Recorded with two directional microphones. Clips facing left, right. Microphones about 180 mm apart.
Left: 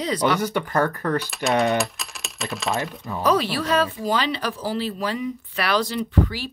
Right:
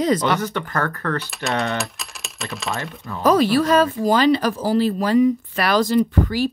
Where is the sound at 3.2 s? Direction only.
45° right (ahead or behind).